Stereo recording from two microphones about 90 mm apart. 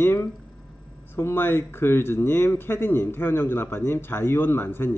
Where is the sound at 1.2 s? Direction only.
25° left (ahead or behind).